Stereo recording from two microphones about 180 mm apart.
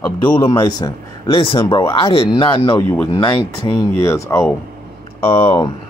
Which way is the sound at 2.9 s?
10° left (ahead or behind).